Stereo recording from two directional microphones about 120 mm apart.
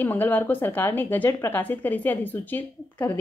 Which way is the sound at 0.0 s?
15° left (ahead or behind).